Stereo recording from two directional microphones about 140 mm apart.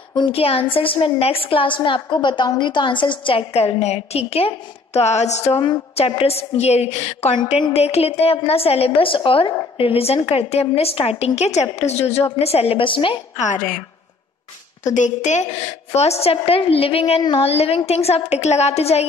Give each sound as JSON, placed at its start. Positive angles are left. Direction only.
{"t": 0.1, "sound": "a woman's voice", "side_deg": 40}
{"t": 5.6, "sound": "a woman's voice", "side_deg": 40}
{"t": 13.4, "sound": "a woman's voice", "side_deg": 65}
{"t": 15.0, "sound": "a woman's voice", "side_deg": 60}
{"t": 15.9, "sound": "a woman's voice", "side_deg": 50}